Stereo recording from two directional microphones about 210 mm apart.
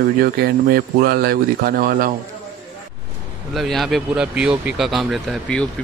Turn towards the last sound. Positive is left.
turn(degrees=0)  # may be behind; listen again after turning